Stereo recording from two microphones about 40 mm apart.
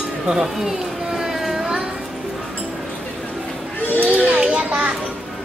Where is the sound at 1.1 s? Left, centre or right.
Centre.